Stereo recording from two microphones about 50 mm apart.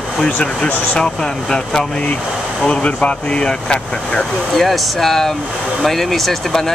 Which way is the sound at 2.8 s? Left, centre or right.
Left.